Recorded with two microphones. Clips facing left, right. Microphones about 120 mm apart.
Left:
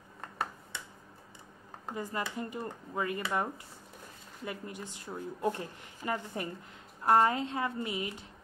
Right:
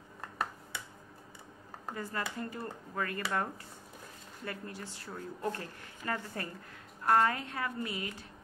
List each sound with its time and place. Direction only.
2.0 s speech: 15° left (ahead or behind)
4.5 s a woman's voice: 20° left (ahead or behind)